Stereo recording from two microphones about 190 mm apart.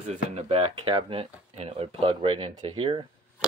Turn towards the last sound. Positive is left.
turn(degrees=-25)  # may be behind; listen again after turning